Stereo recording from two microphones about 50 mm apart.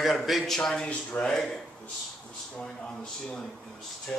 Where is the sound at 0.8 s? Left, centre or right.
Left.